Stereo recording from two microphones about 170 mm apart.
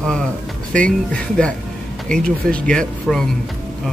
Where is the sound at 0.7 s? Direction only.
5° left (ahead or behind).